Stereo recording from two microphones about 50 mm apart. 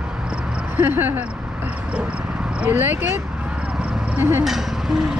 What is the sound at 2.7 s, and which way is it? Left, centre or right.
Speech, right.